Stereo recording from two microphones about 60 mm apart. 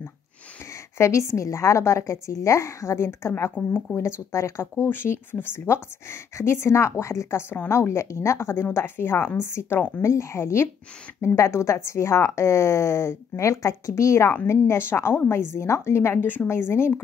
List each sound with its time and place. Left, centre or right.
0.9 s a woman's voice: left
3.5 s a woman's voice: left
4.0 s speech: left
4.8 s a woman's voice: left
9.8 s a woman's voice: left
10.0 s speech: left
14.5 s speech: left